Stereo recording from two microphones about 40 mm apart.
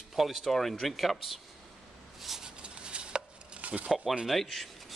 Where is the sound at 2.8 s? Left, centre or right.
Right.